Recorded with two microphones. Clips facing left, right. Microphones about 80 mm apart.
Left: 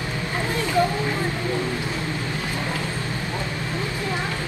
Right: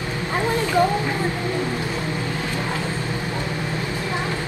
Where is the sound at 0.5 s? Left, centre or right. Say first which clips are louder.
Right 2 dB; right.